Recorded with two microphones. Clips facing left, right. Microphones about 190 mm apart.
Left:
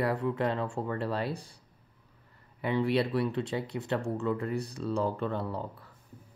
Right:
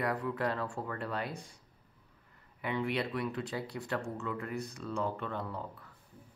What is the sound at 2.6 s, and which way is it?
Speech, 35° left (ahead or behind).